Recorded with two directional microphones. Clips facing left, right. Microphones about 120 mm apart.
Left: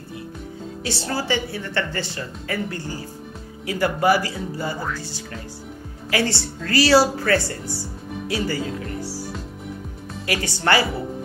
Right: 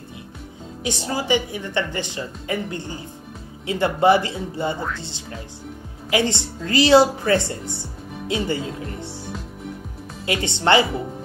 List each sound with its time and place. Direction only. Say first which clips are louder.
0.8 s a woman's voice: right 2 dB; 15° right (ahead or behind)